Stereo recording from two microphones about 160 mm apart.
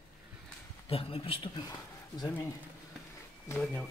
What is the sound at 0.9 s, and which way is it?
Speech, 35° left (ahead or behind).